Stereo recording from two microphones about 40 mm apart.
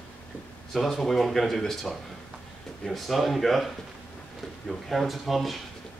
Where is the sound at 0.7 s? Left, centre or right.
Centre.